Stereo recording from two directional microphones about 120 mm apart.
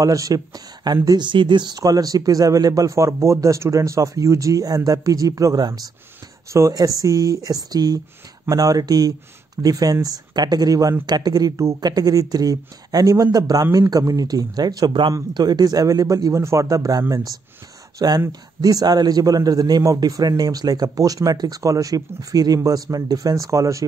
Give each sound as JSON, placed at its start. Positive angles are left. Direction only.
{"t": 0.0, "sound": "a man's voice", "side_deg": -30}